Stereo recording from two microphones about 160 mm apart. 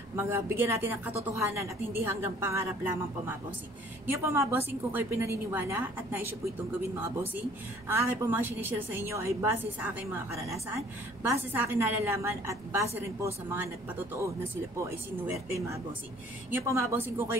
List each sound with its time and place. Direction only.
0.1 s a woman's voice: 15° right (ahead or behind)
7.9 s a woman's voice: 15° right (ahead or behind)